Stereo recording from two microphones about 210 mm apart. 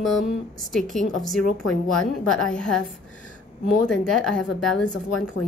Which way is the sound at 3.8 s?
Centre (ahead or behind).